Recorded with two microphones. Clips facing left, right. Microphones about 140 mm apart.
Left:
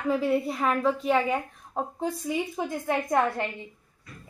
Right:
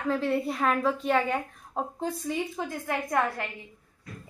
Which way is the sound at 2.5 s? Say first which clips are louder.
Left 3 dB; 15° left (ahead or behind).